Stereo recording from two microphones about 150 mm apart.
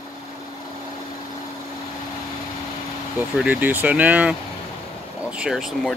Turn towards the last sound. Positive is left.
turn(degrees=-5)  # may be behind; listen again after turning